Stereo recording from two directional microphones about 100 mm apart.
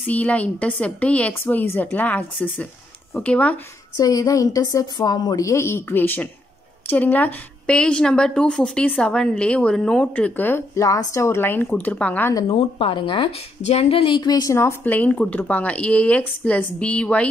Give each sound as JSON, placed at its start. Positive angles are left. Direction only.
{"t": 0.0, "sound": "a woman's voice", "side_deg": 15}
{"t": 3.9, "sound": "a woman's voice", "side_deg": 40}
{"t": 10.8, "sound": "a woman's voice", "side_deg": 35}
{"t": 12.4, "sound": "a woman's voice", "side_deg": 70}
{"t": 14.5, "sound": "a woman's voice", "side_deg": 25}